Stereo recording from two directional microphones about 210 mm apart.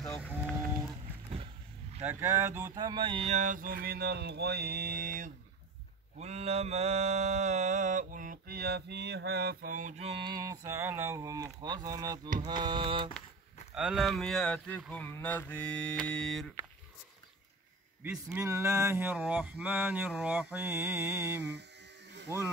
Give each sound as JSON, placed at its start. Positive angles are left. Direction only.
{"t": 1.4, "sound": "vehicle", "side_deg": -30}
{"t": 2.0, "sound": "mantra", "side_deg": -10}
{"t": 10.2, "sound": "a sound", "side_deg": -20}
{"t": 12.4, "sound": "mantra", "side_deg": -20}
{"t": 13.7, "sound": "speech", "side_deg": 0}
{"t": 18.0, "sound": "a sound", "side_deg": -10}